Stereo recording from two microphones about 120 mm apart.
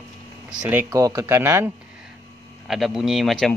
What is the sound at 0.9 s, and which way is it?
Speech, 30° right (ahead or behind).